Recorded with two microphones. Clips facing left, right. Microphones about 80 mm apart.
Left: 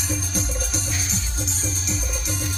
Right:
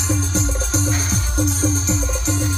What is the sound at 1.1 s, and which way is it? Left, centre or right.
Music, right.